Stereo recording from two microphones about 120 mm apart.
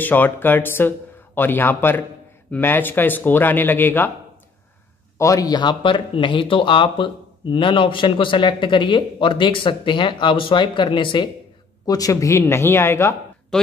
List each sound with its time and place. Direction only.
0.0 s speech: 15° left (ahead or behind)
5.2 s speech: 30° left (ahead or behind)
11.8 s speech: 30° left (ahead or behind)
13.5 s speech: 5° left (ahead or behind)